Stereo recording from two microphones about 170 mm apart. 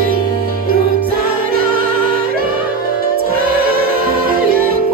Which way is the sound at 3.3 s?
60° right (ahead or behind).